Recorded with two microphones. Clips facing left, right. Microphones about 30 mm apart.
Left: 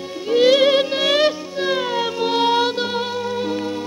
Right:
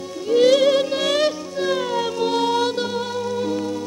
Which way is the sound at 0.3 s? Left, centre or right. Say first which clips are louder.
Left 1 dB; left.